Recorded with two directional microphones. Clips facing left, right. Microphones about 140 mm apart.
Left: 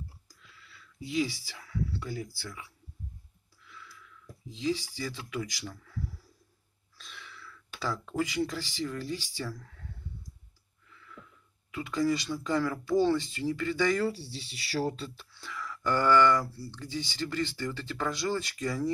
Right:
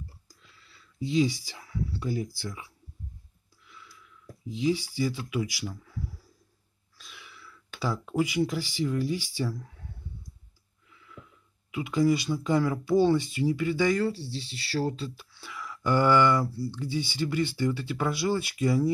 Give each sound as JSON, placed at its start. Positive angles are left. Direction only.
{"t": 0.3, "sound": "a sound", "side_deg": -30}
{"t": 4.9, "sound": "speech", "side_deg": -10}
{"t": 10.9, "sound": "a sound", "side_deg": -15}
{"t": 11.7, "sound": "speech", "side_deg": -15}
{"t": 13.9, "sound": "speech", "side_deg": 5}
{"t": 15.1, "sound": "speech", "side_deg": -10}